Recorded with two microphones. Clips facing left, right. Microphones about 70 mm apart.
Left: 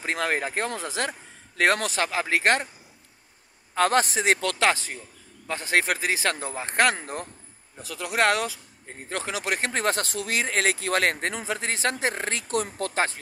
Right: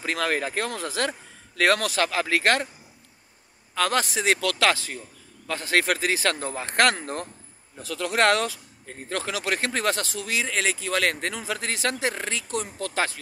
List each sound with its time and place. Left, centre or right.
0.0 s speech: left
3.7 s speech: left
10.0 s speech: left
11.0 s speech: left
12.8 s speech: left